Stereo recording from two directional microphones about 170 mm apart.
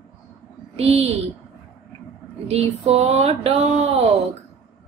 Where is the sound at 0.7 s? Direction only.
35° right (ahead or behind).